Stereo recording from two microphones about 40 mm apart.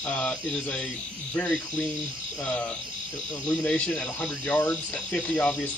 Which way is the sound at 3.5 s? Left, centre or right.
Left.